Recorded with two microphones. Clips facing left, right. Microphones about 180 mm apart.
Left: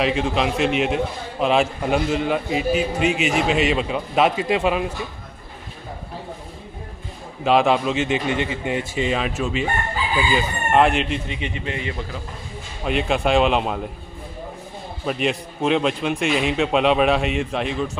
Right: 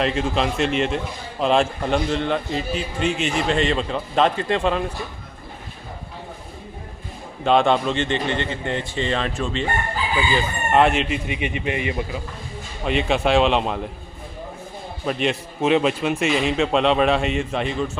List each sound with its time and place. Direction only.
0.0 s a man's voice: 5° left (ahead or behind)
7.4 s a man's voice: 5° left (ahead or behind)
11.2 s speech: 15° right (ahead or behind)
12.8 s a man's voice: centre (ahead or behind)
15.0 s a man's voice: centre (ahead or behind)